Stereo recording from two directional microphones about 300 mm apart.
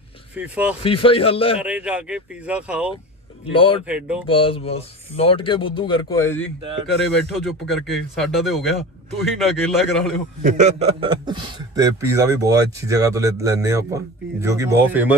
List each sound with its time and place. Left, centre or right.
0.4 s speech: centre
0.8 s speech: centre
1.6 s speech: centre
3.5 s speech: centre
3.8 s speech: centre
4.3 s speech: centre
10.4 s a man's voice: right; by 15.1 s centre